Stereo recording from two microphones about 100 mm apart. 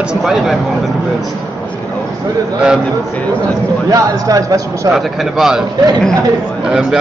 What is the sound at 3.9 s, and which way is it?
A man's voice, 35° right (ahead or behind).